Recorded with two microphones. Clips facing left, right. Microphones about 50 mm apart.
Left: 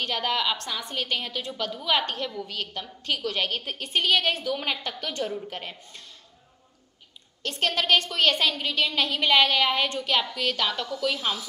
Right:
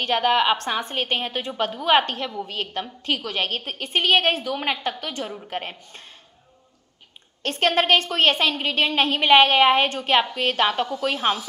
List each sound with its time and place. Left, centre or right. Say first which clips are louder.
0.0 s a woman's voice: right 7 dB; right
2.1 s a woman's voice: right 3 dB; right
5.0 s a woman's voice: even; right
5.5 s a woman's voice: right 6 dB; right
7.4 s a woman's voice: right 5 dB; right